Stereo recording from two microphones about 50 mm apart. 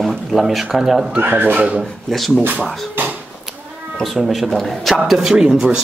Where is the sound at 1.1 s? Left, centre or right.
Right.